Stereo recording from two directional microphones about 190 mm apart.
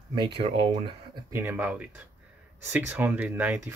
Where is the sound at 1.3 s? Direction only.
10° right (ahead or behind).